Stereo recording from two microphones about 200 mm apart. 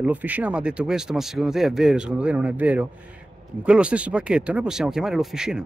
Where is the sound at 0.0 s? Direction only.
10° right (ahead or behind).